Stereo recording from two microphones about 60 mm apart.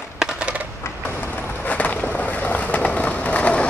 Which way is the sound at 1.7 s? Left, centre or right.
Left.